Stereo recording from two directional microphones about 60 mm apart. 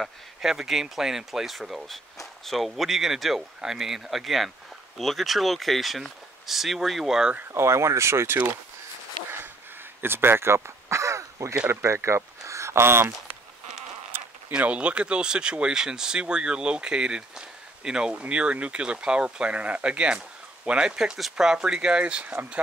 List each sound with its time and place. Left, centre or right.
0.0 s speech: centre
7.5 s speech: right
10.0 s a sound: right
11.8 s speech: right
14.6 s speech: right